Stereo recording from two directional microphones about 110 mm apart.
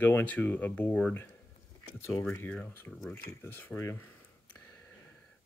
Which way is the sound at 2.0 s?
25° left (ahead or behind).